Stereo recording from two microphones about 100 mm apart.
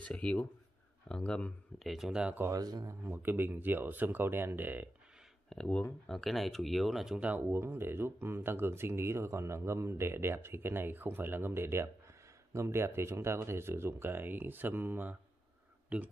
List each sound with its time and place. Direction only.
0.0 s speech: 10° left (ahead or behind)
1.9 s speech: centre (ahead or behind)
2.5 s speech: 40° right (ahead or behind)
2.8 s speech: 20° right (ahead or behind)
5.5 s speech: 5° left (ahead or behind)
7.2 s speech: 15° right (ahead or behind)